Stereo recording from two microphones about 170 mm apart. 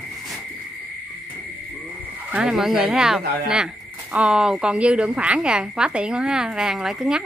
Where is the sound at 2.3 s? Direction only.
5° right (ahead or behind).